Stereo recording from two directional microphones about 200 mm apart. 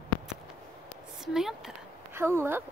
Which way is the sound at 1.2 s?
Centre (ahead or behind).